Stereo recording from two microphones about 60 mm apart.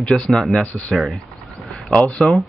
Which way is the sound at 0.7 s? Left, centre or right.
Left.